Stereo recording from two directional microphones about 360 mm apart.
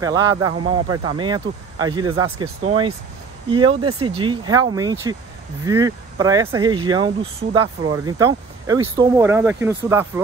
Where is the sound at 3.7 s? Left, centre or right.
Right.